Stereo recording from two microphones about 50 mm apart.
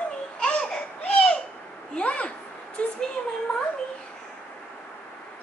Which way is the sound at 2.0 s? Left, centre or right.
Left.